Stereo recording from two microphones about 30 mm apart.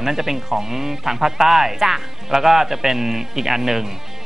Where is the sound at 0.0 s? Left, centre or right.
Centre.